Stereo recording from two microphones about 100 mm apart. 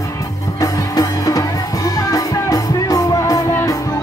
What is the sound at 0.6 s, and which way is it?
Music, 35° left (ahead or behind).